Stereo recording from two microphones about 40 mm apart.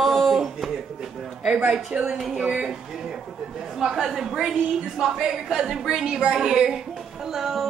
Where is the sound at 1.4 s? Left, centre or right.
Right.